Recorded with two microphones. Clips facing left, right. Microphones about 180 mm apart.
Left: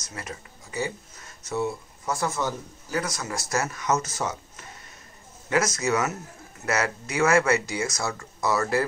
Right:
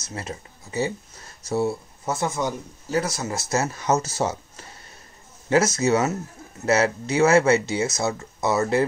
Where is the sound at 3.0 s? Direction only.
30° right (ahead or behind).